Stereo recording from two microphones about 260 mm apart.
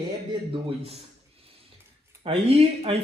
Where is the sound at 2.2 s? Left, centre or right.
Right.